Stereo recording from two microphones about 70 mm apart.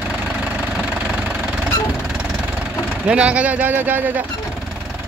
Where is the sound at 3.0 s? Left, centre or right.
Centre.